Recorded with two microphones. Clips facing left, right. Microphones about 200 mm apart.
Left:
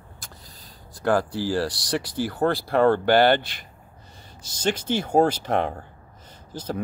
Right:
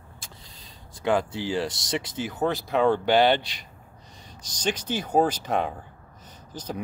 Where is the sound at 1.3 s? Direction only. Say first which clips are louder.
Left 3 dB; 20° right (ahead or behind).